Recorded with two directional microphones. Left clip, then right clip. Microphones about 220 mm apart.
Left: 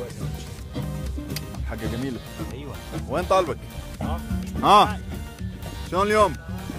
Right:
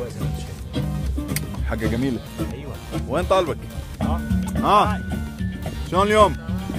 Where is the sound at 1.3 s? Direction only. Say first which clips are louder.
Right 6 dB; 20° right (ahead or behind).